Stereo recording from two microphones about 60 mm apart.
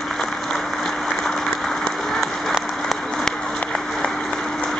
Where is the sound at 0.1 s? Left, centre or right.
Centre.